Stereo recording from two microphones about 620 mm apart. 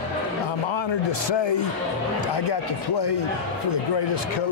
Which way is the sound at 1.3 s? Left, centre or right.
Left.